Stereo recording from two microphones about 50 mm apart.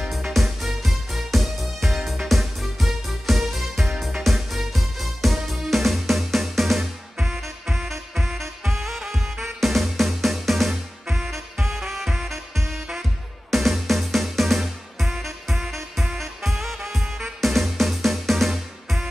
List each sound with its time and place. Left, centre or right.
0.0 s music: centre
7.2 s music: centre
8.4 s music: centre
13.5 s music: centre